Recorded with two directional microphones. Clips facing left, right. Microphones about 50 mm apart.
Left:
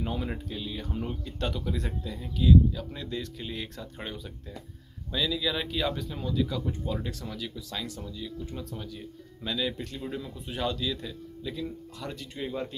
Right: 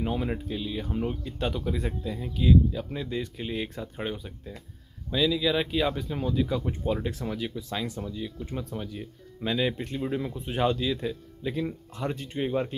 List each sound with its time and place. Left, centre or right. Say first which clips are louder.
0.0 s speech: right 4 dB; centre